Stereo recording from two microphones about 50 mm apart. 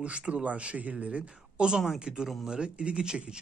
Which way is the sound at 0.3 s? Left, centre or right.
Right.